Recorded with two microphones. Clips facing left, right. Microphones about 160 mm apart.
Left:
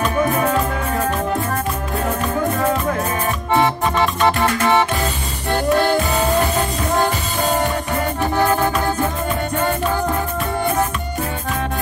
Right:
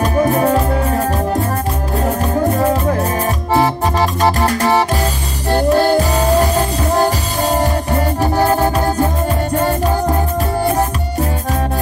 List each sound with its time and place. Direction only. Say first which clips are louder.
0.0 s music: right 4 dB; 35° right (ahead or behind)